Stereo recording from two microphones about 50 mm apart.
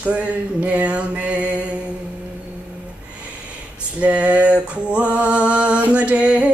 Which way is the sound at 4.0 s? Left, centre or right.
Right.